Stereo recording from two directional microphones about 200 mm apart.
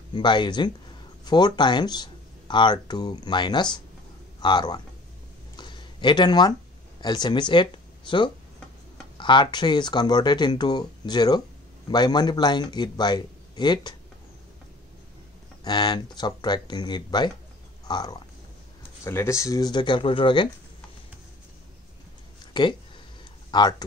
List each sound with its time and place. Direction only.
0.1 s speech: 20° left (ahead or behind)
5.6 s a sound: 25° left (ahead or behind)
7.0 s speech: 20° left (ahead or behind)
15.6 s speech: 20° left (ahead or behind)
22.5 s speech: 25° left (ahead or behind)